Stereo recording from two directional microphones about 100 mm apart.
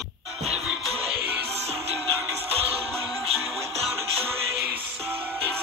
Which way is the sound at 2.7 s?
90° right.